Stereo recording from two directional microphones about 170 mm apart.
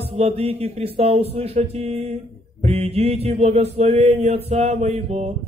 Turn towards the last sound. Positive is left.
turn(degrees=-40)  # may be behind; listen again after turning